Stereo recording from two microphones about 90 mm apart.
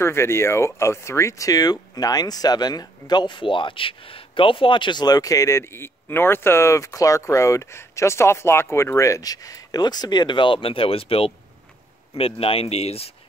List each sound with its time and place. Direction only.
0.0 s speech: 30° left (ahead or behind); by 13.1 s 90° left